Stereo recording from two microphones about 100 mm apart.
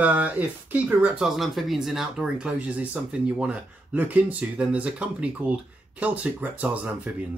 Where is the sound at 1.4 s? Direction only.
Centre (ahead or behind).